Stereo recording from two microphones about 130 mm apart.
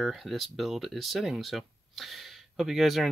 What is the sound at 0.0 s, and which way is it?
Speech, centre (ahead or behind).